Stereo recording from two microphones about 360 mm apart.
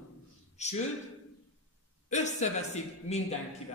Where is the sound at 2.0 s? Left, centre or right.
Centre.